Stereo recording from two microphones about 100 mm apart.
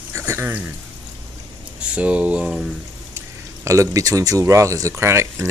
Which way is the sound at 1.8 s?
15° right (ahead or behind).